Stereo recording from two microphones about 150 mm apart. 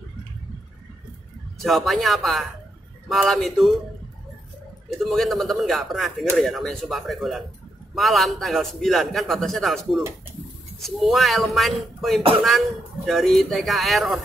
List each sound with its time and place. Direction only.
1.6 s a man's voice: centre (ahead or behind)
4.8 s a man's voice: centre (ahead or behind)